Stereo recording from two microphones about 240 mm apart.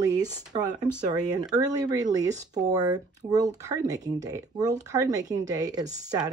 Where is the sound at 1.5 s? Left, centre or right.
Centre.